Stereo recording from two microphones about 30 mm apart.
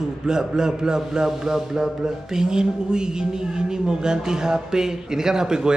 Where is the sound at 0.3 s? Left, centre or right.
Right.